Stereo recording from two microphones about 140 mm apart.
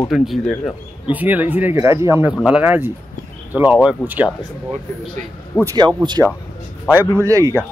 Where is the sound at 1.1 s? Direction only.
10° right (ahead or behind).